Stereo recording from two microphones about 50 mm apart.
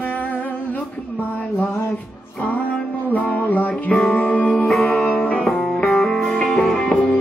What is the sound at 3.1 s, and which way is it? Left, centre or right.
Music, left.